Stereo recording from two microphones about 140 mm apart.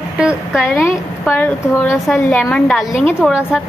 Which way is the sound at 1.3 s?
15° left (ahead or behind).